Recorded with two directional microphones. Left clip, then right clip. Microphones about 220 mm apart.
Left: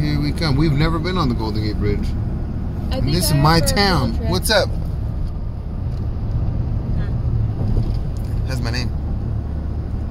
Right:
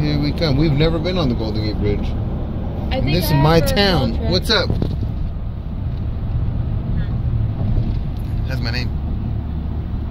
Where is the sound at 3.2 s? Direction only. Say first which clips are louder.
Right 1 dB; 20° left (ahead or behind).